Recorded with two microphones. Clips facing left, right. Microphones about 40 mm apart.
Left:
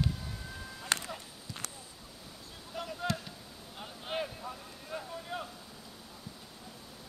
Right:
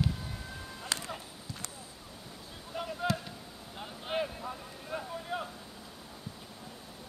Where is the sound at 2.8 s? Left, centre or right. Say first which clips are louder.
Right 2 dB; centre.